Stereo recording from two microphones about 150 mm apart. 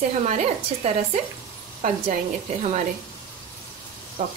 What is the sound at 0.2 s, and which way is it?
Speech, 50° right (ahead or behind).